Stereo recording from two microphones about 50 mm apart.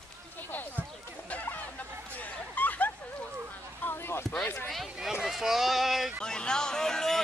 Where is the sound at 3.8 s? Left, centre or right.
Left.